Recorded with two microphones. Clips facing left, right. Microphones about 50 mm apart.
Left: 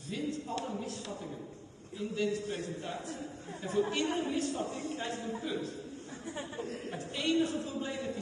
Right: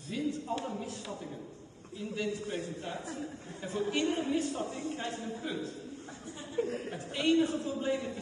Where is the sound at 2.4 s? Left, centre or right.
Right.